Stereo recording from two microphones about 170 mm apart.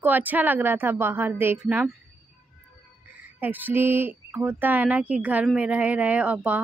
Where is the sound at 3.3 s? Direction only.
10° right (ahead or behind).